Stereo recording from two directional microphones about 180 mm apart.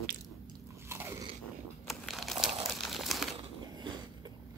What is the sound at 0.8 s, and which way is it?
Biting, 15° right (ahead or behind).